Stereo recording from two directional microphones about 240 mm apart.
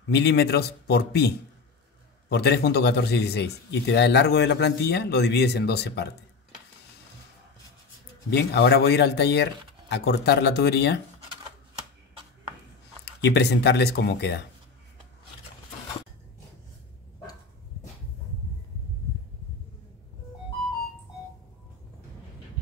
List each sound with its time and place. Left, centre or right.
0.1 s speech: left
8.3 s speech: left
13.2 s speech: left